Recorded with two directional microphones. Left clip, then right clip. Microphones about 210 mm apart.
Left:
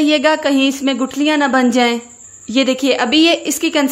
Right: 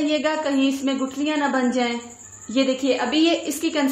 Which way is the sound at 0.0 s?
50° left (ahead or behind).